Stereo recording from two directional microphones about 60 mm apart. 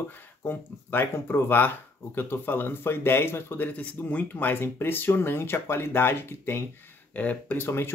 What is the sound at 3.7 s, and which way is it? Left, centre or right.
Speech, left.